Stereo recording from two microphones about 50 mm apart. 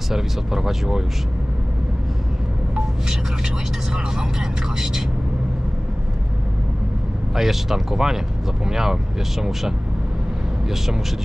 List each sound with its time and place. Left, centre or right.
0.1 s speech: centre
2.7 s speech: centre
7.3 s speech: centre